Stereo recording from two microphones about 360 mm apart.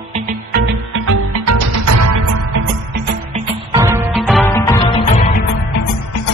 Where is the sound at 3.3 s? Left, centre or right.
Centre.